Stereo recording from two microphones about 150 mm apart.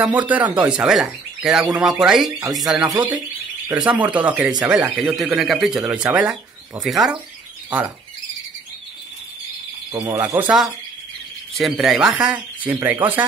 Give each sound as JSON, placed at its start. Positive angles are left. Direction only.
{"t": 0.0, "sound": "speech", "side_deg": -10}
{"t": 3.1, "sound": "speech", "side_deg": -25}
{"t": 3.7, "sound": "speech", "side_deg": -10}
{"t": 10.0, "sound": "speech", "side_deg": -15}